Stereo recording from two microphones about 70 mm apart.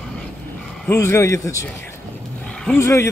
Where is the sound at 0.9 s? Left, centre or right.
Left.